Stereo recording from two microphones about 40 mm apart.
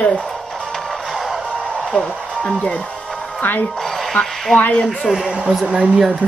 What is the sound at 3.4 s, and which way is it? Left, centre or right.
Speech, left.